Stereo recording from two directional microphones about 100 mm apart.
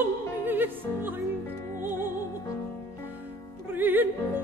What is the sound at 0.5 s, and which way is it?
Music, 20° right (ahead or behind).